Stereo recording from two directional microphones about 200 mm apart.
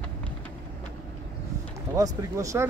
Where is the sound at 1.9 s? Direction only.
15° right (ahead or behind).